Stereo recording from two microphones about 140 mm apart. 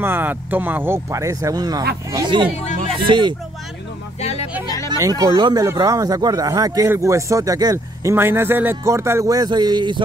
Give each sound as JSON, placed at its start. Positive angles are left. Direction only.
{"t": 0.0, "sound": "speech", "side_deg": -15}
{"t": 4.2, "sound": "music", "side_deg": 50}
{"t": 4.8, "sound": "speech", "side_deg": -25}